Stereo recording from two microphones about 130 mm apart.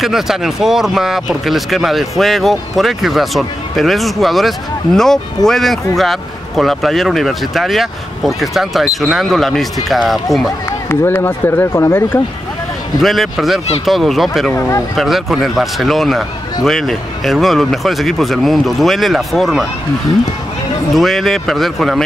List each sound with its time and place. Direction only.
0.0 s speech: 5° right (ahead or behind)
10.9 s speech: 15° left (ahead or behind)
13.0 s speech: centre (ahead or behind)
14.5 s speech: 15° left (ahead or behind)
15.0 s speech: centre (ahead or behind)
20.9 s speech: centre (ahead or behind)